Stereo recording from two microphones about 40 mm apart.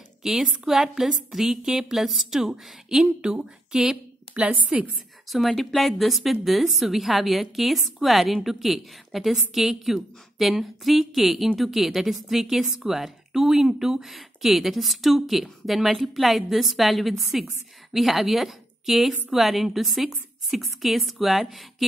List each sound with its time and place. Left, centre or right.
0.2 s a woman's voice: centre
2.0 s a woman's voice: centre
2.4 s a woman's voice: centre
3.8 s a sound: centre
4.7 s a woman's voice: right
5.3 s a woman's voice: centre